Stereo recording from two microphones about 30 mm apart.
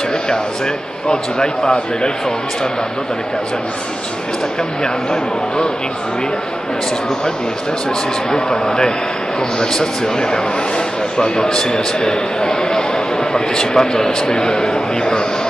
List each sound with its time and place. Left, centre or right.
1.0 s a man's voice: left
4.8 s a man's voice: left
8.3 s a man's voice: left